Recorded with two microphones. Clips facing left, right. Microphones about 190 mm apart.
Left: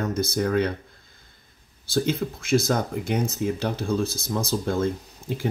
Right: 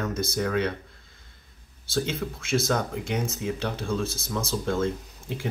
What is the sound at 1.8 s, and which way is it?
Speech, 35° left (ahead or behind).